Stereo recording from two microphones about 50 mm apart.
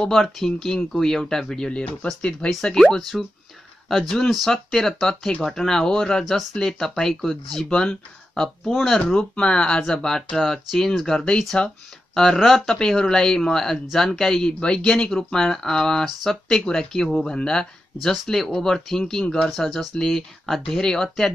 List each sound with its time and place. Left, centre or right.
0.0 s speech: centre
8.7 s speech: centre
9.1 s speech: centre
12.4 s speech: centre
12.7 s speech: centre
19.5 s speech: centre